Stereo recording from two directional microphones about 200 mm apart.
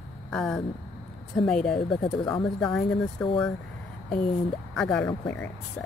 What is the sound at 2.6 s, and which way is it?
Speech, 5° left (ahead or behind).